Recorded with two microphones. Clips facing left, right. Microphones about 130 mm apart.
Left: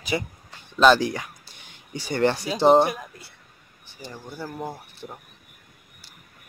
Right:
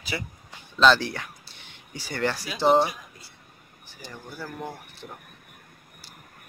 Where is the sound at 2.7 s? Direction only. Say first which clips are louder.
Left 3 dB; 55° left (ahead or behind).